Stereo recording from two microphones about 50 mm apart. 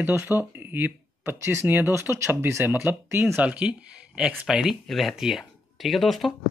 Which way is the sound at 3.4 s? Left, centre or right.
Right.